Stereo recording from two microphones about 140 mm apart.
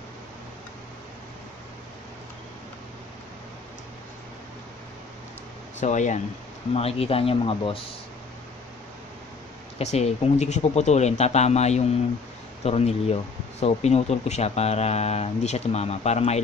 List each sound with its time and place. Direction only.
5.8 s speech: 60° left (ahead or behind)
6.7 s speech: 45° left (ahead or behind)
9.8 s speech: 50° left (ahead or behind)